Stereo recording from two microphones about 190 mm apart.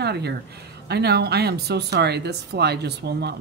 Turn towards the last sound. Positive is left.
turn(degrees=-60)  # may be behind; listen again after turning